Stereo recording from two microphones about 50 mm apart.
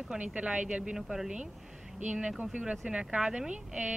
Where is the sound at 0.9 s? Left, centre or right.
Centre.